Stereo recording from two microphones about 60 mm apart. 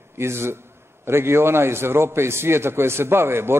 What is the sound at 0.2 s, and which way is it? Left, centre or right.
A man's voice, right.